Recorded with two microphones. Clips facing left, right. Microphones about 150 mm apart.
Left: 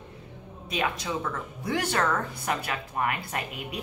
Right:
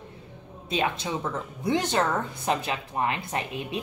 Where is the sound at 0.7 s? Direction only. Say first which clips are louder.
Right 2 dB; 25° right (ahead or behind).